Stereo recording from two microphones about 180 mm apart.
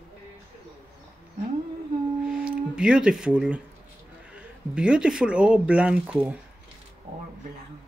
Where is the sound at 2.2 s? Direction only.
5° right (ahead or behind).